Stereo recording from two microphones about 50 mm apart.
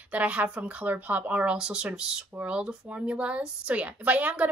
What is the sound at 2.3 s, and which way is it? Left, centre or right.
A woman's voice, right.